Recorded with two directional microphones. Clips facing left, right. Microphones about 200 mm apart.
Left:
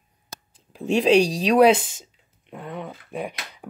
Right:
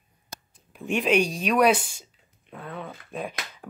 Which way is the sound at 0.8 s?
35° left (ahead or behind).